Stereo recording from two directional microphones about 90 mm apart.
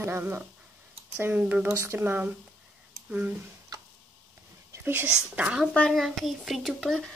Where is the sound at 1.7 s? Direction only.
30° right (ahead or behind).